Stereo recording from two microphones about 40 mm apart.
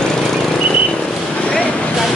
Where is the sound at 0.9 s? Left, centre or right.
Left.